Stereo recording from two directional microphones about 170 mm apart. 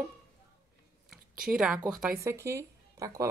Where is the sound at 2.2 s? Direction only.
15° right (ahead or behind).